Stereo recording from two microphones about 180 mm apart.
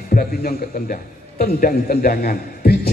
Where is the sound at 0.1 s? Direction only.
55° left (ahead or behind).